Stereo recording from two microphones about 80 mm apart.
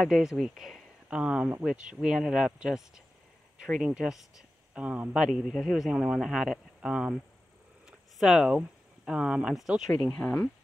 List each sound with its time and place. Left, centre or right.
0.0 s a man's voice: centre
10.1 s speech: centre